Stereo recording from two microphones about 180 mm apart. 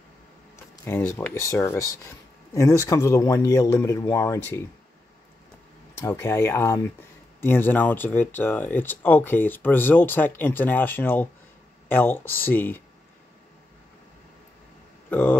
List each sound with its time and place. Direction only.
0.8 s speech: 10° left (ahead or behind)
5.9 s speech: 15° left (ahead or behind)
15.0 s a sound: 10° left (ahead or behind)